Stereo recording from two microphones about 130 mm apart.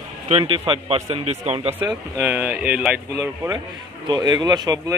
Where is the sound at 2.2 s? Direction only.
15° right (ahead or behind).